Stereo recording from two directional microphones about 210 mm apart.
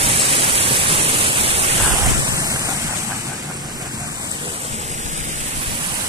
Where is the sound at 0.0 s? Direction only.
25° right (ahead or behind).